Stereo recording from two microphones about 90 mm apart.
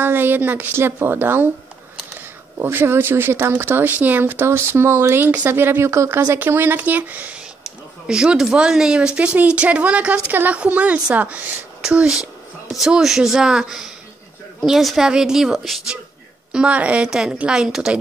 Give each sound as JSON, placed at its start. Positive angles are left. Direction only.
{"t": 0.0, "sound": "a woman's voice", "side_deg": -25}
{"t": 16.5, "sound": "speech", "side_deg": -15}